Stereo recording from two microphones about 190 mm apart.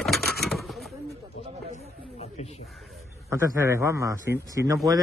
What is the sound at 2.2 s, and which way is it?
Snake, 35° left (ahead or behind).